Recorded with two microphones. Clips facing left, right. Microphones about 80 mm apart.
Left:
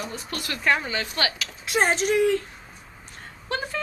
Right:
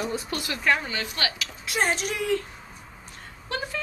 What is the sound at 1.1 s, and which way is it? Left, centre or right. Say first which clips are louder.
Speech: left 3 dB; left.